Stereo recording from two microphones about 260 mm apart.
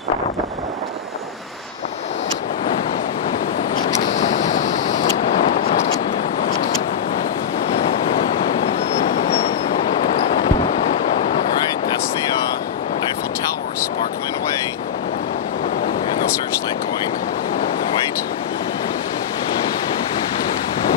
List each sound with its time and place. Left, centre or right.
3.8 s vehicle: left